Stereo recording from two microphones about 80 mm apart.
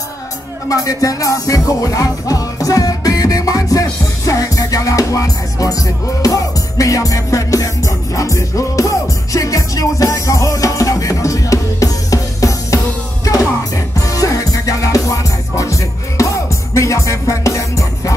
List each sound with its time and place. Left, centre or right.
0.7 s music: left